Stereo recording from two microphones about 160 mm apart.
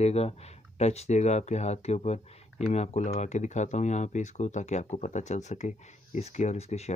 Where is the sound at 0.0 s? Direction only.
40° left (ahead or behind).